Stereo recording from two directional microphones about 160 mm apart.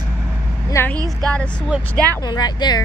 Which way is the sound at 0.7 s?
15° left (ahead or behind).